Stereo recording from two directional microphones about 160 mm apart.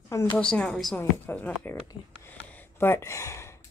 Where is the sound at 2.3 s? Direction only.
10° left (ahead or behind).